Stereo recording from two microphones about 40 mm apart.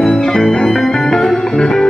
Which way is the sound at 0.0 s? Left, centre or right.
Centre.